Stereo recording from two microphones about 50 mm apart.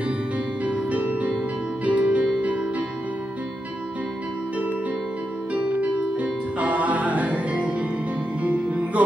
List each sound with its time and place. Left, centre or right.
0.7 s music: right
5.5 s music: right